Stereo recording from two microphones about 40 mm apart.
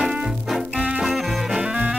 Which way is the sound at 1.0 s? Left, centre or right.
Centre.